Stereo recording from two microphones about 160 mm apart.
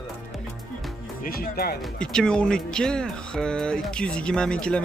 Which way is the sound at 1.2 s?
70° left (ahead or behind).